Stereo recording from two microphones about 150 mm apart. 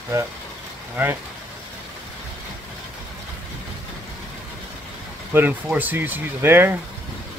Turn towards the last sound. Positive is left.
turn(degrees=-15)  # may be behind; listen again after turning